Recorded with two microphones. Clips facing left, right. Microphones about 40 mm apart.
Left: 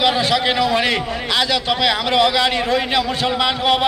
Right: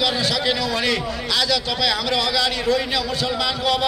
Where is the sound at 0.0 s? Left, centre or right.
Left.